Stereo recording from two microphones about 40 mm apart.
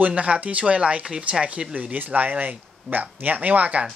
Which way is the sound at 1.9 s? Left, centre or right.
Right.